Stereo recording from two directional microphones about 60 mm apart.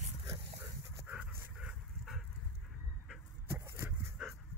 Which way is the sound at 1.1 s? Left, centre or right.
Right.